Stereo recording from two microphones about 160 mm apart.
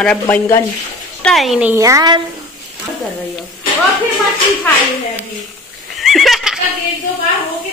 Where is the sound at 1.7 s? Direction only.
20° right (ahead or behind).